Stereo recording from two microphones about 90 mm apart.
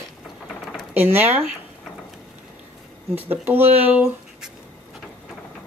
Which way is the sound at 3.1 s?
20° right (ahead or behind).